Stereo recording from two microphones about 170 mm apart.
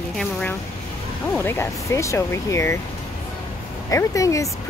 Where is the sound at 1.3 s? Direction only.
15° left (ahead or behind).